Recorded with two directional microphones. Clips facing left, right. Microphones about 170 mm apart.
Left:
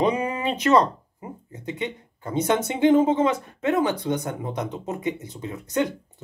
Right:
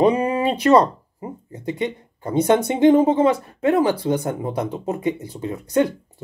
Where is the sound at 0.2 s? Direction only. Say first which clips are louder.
Right 5 dB; 40° right (ahead or behind).